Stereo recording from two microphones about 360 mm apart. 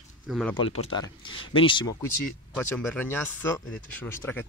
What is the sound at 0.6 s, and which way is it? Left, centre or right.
Speech, centre.